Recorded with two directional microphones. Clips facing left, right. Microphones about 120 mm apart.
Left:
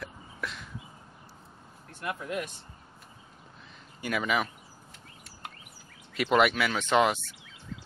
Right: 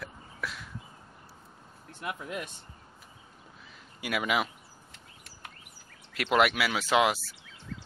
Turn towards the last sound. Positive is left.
turn(degrees=-5)  # may be behind; listen again after turning